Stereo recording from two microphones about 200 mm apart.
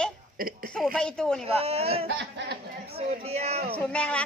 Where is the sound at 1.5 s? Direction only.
30° right (ahead or behind).